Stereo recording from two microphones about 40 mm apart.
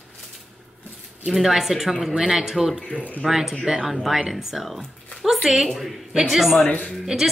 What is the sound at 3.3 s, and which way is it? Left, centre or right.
Speech, centre.